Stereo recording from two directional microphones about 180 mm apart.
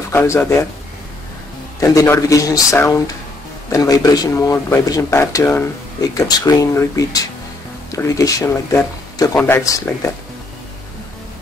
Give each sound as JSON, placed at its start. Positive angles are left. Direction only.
{"t": 0.1, "sound": "speech", "side_deg": 10}
{"t": 1.8, "sound": "speech", "side_deg": 20}